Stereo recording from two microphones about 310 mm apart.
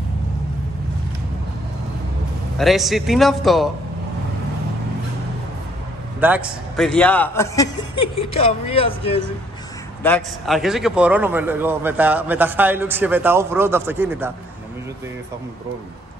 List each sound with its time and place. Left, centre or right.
2.5 s a man's voice: centre
6.2 s a man's voice: centre
10.0 s a man's voice: centre